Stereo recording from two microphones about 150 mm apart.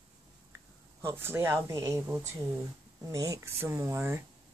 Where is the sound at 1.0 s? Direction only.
15° right (ahead or behind).